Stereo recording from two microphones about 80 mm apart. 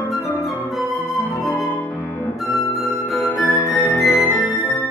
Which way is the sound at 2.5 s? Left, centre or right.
Left.